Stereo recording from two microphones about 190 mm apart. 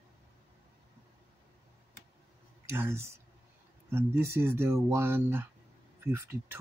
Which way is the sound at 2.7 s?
15° right (ahead or behind).